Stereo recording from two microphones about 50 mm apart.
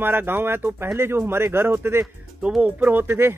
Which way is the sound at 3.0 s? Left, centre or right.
Right.